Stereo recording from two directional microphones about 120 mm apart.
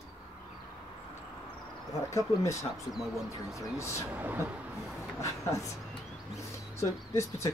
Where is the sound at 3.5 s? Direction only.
25° left (ahead or behind).